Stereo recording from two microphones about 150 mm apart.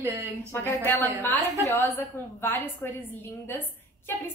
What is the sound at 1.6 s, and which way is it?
A woman's voice, 15° left (ahead or behind).